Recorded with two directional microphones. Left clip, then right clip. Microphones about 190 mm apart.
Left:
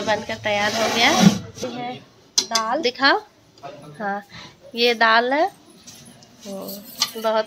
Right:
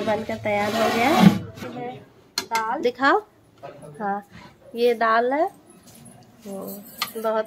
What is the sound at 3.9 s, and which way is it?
A woman's voice, centre (ahead or behind).